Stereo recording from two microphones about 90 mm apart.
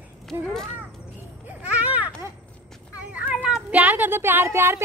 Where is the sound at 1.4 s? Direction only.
15° right (ahead or behind).